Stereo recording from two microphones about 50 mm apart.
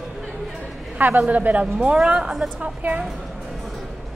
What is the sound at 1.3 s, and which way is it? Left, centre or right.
Speech, right.